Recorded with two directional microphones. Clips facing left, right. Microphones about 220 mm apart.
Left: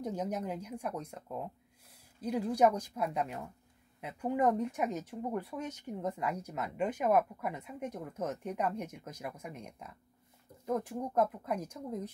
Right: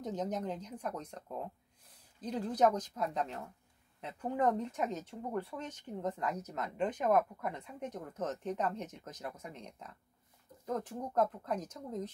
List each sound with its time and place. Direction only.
0.0 s speech: 10° left (ahead or behind)